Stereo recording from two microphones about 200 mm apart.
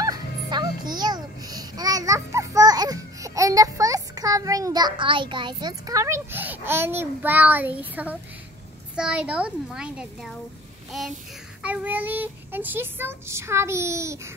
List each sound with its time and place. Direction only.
0.0 s music: 20° right (ahead or behind)
8.9 s a child's voice: 5° right (ahead or behind)